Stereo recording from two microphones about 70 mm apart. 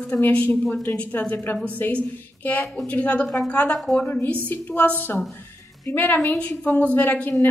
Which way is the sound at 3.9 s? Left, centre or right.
Left.